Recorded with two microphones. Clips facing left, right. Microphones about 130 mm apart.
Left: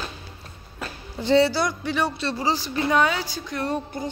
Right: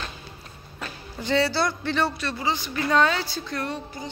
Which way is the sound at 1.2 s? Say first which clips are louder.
Left 5 dB; 25° left (ahead or behind).